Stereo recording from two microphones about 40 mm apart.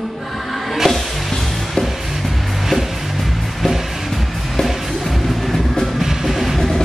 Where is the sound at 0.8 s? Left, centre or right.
Centre.